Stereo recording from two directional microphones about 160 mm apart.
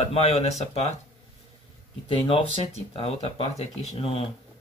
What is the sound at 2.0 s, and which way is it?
Speech, 35° left (ahead or behind).